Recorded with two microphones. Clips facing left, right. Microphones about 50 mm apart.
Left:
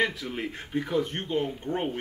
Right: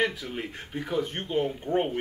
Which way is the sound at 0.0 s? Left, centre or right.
Centre.